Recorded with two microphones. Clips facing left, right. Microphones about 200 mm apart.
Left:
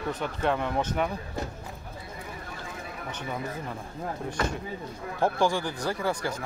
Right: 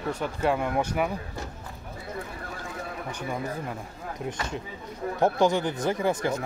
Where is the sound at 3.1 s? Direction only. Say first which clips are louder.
Right 1 dB; 10° right (ahead or behind).